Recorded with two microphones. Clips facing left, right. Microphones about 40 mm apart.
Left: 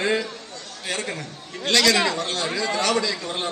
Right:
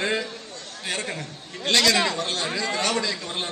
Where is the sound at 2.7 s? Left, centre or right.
Right.